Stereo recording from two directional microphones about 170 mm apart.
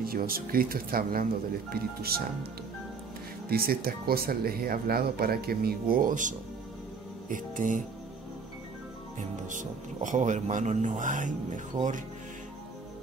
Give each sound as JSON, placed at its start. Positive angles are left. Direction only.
{"t": 0.0, "sound": "speech", "side_deg": -60}
{"t": 3.4, "sound": "speech", "side_deg": -65}
{"t": 9.5, "sound": "speech", "side_deg": -50}